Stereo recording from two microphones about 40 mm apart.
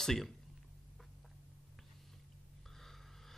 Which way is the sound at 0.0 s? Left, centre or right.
Centre.